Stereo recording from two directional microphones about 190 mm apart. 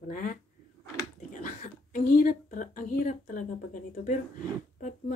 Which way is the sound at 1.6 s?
40° left (ahead or behind).